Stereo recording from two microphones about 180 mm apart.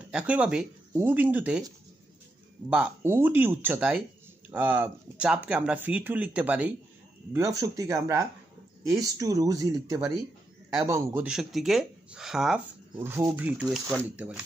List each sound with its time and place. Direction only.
0.1 s speech: 5° right (ahead or behind)
2.7 s speech: 10° right (ahead or behind)
11.2 s speech: centre (ahead or behind)